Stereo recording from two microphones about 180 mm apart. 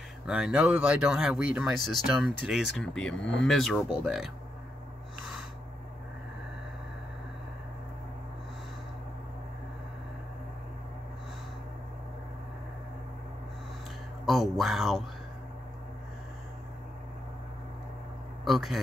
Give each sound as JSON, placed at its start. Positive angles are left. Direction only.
{"t": 0.3, "sound": "speech", "side_deg": -5}
{"t": 14.2, "sound": "speech", "side_deg": 0}
{"t": 18.4, "sound": "a man's voice", "side_deg": 0}